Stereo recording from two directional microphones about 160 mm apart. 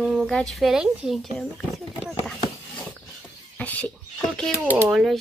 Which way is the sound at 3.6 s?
10° left (ahead or behind).